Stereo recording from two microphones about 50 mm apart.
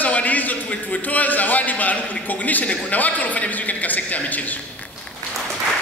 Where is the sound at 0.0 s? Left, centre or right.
Left.